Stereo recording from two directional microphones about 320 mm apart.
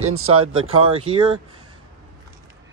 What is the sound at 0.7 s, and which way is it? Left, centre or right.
Speech, centre.